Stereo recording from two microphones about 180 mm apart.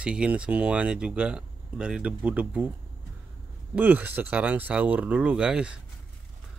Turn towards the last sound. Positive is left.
turn(degrees=-5)  # may be behind; listen again after turning